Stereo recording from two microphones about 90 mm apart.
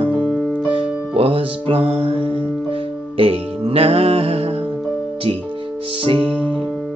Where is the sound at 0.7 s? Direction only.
85° right.